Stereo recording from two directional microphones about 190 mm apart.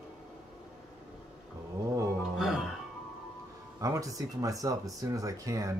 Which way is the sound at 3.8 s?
15° right (ahead or behind).